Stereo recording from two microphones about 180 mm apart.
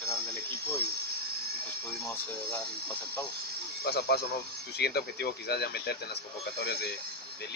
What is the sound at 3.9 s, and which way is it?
Speech, 60° left (ahead or behind).